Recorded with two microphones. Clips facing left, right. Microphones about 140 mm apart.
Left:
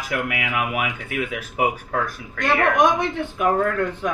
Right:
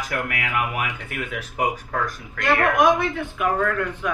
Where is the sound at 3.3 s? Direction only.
40° left (ahead or behind).